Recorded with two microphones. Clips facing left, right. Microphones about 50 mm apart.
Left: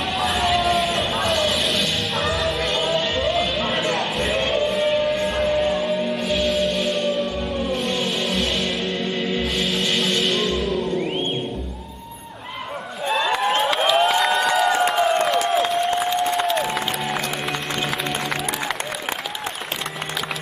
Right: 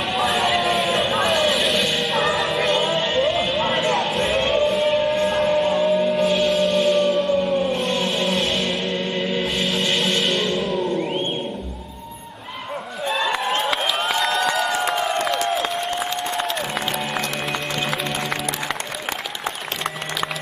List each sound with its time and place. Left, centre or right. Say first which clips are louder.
0.0 s a sound: right 1 dB; centre
4.3 s music: right 2 dB; centre
7.7 s music: right 1 dB; right
8.5 s music: right 1 dB; centre
13.0 s a sound: left 2 dB; centre
14.8 s crowd: left 3 dB; centre
15.2 s applause: left 2 dB; centre